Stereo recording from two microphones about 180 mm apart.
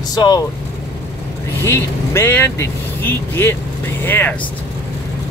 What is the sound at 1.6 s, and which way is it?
Speech, 15° left (ahead or behind).